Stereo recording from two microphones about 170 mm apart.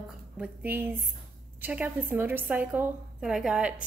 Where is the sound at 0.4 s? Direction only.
10° right (ahead or behind).